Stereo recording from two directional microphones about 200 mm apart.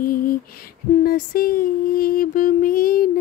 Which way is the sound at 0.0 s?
45° left (ahead or behind).